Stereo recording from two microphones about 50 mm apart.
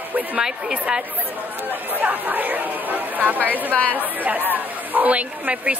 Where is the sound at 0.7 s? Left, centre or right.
Right.